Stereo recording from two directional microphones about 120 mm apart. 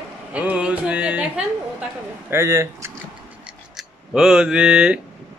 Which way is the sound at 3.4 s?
5° right (ahead or behind).